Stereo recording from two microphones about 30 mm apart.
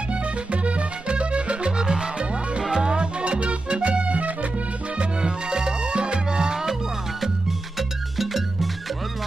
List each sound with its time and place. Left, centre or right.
0.1 s music: right
1.8 s music: right
4.9 s music: right
8.2 s music: centre